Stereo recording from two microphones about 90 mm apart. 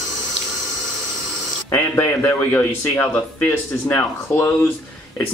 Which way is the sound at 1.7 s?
30° left (ahead or behind).